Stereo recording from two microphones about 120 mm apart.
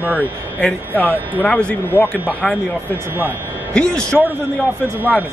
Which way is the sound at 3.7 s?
5° left (ahead or behind).